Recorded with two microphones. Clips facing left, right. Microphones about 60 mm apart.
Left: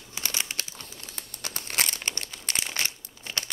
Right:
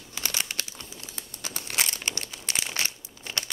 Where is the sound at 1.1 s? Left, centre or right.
Left.